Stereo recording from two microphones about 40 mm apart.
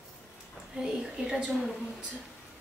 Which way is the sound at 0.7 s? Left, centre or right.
Centre.